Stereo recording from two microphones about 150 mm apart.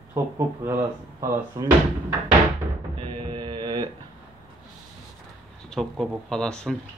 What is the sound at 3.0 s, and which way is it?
Music, 30° right (ahead or behind).